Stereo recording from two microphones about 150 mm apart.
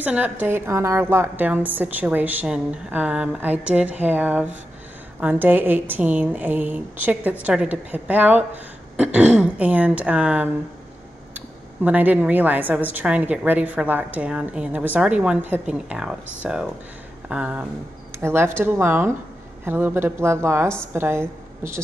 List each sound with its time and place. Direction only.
0.0 s a woman's voice: 10° right (ahead or behind)